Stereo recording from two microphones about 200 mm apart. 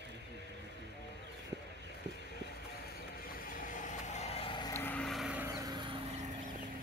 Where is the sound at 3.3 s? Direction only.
45° left (ahead or behind); by 4.7 s 25° left (ahead or behind).